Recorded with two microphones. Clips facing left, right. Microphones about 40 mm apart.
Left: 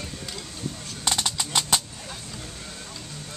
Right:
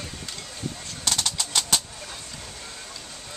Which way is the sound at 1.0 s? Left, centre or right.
Centre.